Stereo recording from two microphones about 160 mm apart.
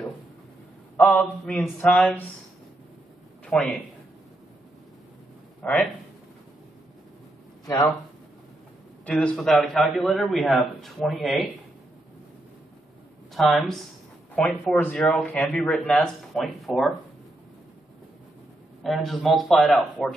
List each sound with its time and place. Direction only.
0.9 s speech: 5° left (ahead or behind)
3.4 s a man's voice: 5° left (ahead or behind)
5.6 s speech: 10° left (ahead or behind)
9.0 s a man's voice: 5° left (ahead or behind)
13.3 s a man's voice: centre (ahead or behind)
18.8 s a man's voice: centre (ahead or behind)